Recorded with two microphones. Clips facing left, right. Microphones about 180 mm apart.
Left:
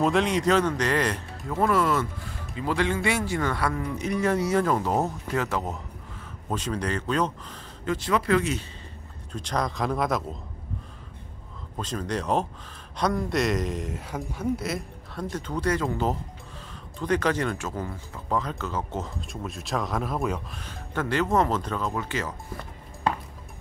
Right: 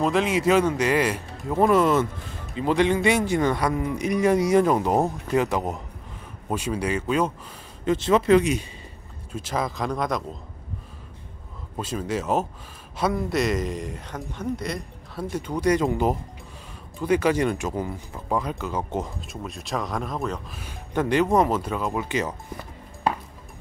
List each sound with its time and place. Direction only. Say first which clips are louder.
0.0 s a man's voice: right 1 dB; centre (ahead or behind)
1.5 s a man's voice: right 4 dB; 20° right (ahead or behind)
7.8 s speech: right 5 dB; 25° right (ahead or behind)
9.3 s a man's voice: right 1 dB; 5° right (ahead or behind)
11.7 s a man's voice: right 2 dB; 10° right (ahead or behind)
15.2 s a man's voice: right 4 dB; 10° right (ahead or behind)
19.2 s a man's voice: even; centre (ahead or behind)
20.5 s a man's voice: right 5 dB; 15° right (ahead or behind)